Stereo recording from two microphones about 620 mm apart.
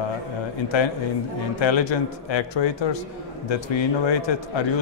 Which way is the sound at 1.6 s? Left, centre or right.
Left.